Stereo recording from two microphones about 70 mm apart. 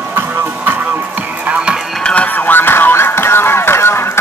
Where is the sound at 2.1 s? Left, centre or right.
Centre.